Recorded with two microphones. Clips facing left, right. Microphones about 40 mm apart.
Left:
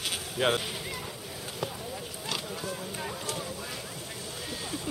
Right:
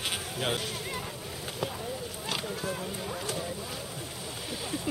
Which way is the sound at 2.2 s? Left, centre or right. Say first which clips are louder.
Right 2 dB; centre.